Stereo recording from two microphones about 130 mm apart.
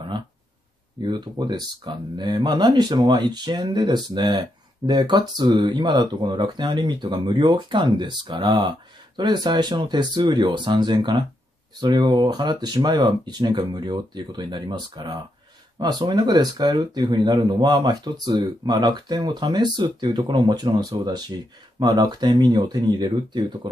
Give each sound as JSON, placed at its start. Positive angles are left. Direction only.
{"t": 1.0, "sound": "speech", "side_deg": -35}